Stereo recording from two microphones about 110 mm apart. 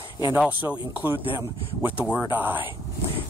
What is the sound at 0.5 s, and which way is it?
Speech, 15° right (ahead or behind).